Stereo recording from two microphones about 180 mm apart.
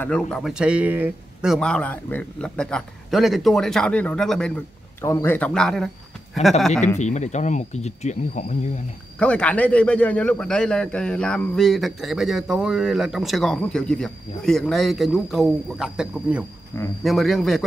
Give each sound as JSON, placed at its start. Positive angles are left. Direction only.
{"t": 0.0, "sound": "a man's voice", "side_deg": 5}
{"t": 5.0, "sound": "speech", "side_deg": 15}
{"t": 7.0, "sound": "speech", "side_deg": 40}
{"t": 9.2, "sound": "a man's voice", "side_deg": 5}